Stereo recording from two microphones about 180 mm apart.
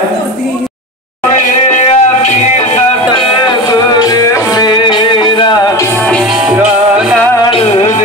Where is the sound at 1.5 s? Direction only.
40° left (ahead or behind).